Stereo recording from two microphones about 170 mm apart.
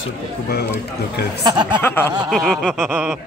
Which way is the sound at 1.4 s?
25° right (ahead or behind).